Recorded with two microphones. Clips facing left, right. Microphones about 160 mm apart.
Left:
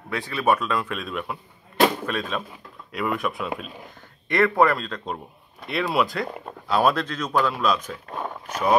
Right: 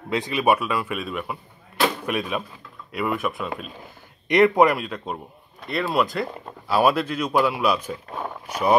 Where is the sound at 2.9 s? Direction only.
Centre (ahead or behind).